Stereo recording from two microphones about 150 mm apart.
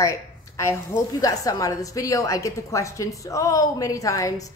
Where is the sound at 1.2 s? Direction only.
25° left (ahead or behind).